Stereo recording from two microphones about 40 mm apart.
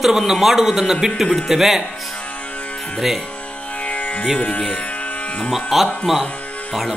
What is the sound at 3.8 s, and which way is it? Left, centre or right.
Music, left.